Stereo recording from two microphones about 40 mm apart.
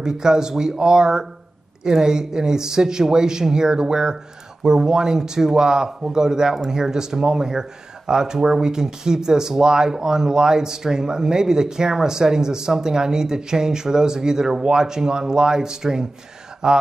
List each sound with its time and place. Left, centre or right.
0.0 s speech: centre